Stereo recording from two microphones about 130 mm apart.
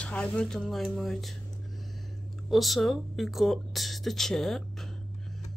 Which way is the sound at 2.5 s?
Centre (ahead or behind).